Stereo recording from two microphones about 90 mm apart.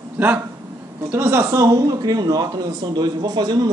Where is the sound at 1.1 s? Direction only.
25° right (ahead or behind); by 3.7 s 50° right (ahead or behind).